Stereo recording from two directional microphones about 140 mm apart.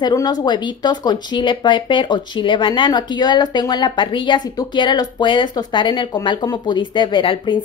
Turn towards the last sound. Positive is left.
turn(degrees=35)  # may be behind; listen again after turning